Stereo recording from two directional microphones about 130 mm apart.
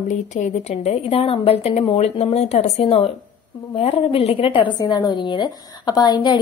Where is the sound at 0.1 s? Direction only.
70° left (ahead or behind).